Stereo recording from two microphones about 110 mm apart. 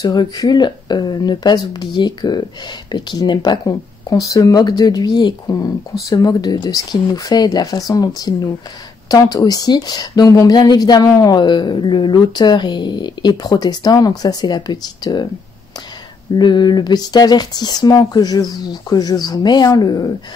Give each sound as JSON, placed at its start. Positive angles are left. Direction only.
{"t": 0.0, "sound": "speech", "side_deg": 40}
{"t": 11.3, "sound": "speech", "side_deg": 45}
{"t": 16.3, "sound": "speech", "side_deg": 40}